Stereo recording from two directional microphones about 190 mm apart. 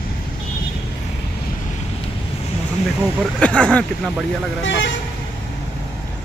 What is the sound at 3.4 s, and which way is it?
Speech, 5° left (ahead or behind).